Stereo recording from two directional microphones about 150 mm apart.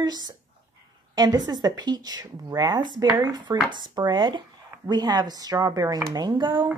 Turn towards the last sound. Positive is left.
turn(degrees=-30)  # may be behind; listen again after turning